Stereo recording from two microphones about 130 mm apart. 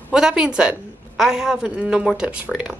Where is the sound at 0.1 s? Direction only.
5° right (ahead or behind).